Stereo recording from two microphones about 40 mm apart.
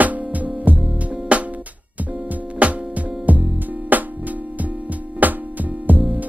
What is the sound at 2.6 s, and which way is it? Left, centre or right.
Music, right.